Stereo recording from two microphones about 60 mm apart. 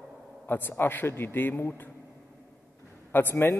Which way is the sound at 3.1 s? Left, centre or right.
Left.